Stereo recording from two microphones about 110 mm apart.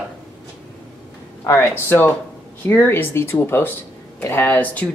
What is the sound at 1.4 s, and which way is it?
Speech, 25° left (ahead or behind).